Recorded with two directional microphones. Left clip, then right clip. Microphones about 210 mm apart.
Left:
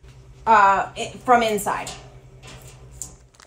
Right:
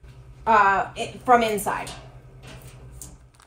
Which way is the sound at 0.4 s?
5° left (ahead or behind).